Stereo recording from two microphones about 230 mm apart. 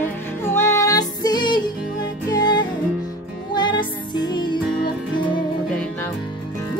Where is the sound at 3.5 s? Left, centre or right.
Centre.